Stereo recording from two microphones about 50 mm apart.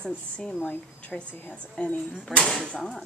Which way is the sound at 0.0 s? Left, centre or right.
Centre.